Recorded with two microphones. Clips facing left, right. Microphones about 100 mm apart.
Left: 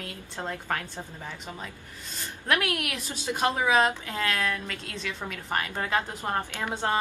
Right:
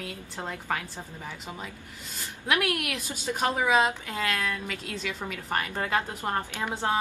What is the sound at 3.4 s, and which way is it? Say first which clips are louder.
Speech: left 1 dB; centre (ahead or behind).